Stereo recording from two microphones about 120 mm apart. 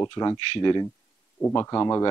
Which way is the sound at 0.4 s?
45° left (ahead or behind).